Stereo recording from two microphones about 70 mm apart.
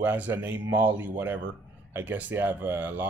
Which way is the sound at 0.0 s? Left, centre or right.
Right.